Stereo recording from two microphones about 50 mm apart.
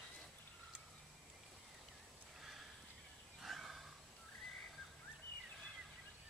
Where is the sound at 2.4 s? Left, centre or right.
Centre.